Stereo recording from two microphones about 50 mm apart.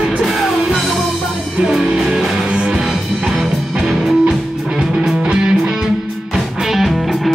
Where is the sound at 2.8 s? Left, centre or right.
Centre.